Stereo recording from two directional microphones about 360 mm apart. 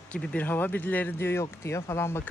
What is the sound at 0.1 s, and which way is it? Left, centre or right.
A woman's voice, centre.